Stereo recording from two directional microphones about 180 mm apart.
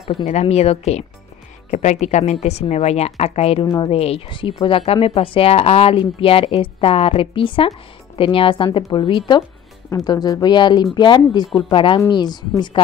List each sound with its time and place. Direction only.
0.1 s a woman's voice: 35° left (ahead or behind)